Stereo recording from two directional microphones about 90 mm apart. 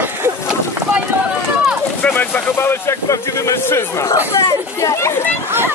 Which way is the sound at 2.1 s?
25° left (ahead or behind).